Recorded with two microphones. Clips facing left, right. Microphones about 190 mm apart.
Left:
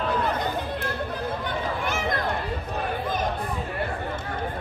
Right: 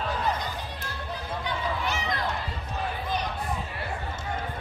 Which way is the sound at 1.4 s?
50° left (ahead or behind).